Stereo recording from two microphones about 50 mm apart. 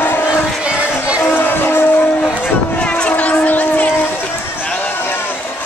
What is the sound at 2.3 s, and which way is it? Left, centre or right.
Vehicle, left.